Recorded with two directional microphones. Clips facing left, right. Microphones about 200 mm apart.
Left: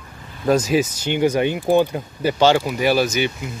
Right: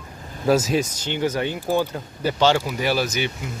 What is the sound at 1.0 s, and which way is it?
Speech, 15° left (ahead or behind).